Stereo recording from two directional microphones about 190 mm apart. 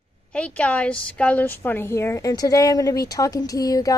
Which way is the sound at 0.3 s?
5° left (ahead or behind).